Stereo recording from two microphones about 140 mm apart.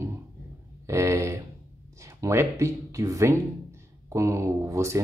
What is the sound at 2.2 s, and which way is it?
Speech, 20° right (ahead or behind).